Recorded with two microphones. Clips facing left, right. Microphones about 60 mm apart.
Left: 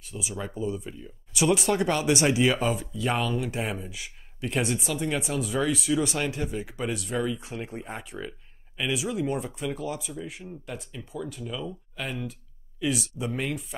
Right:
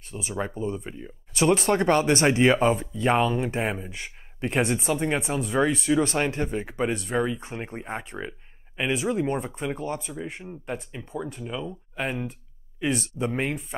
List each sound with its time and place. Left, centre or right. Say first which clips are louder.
0.1 s speech: right 4 dB; right
8.2 s a sound: right 2 dB; right
8.8 s speech: right 3 dB; right
11.0 s speech: right 2 dB; right
13.3 s speech: right 1 dB; right